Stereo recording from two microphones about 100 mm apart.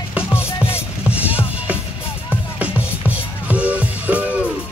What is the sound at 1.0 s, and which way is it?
Music, 15° right (ahead or behind).